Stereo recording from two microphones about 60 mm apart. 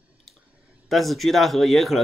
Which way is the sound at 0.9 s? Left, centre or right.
Centre.